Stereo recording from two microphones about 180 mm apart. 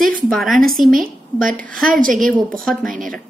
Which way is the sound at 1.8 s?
50° right (ahead or behind).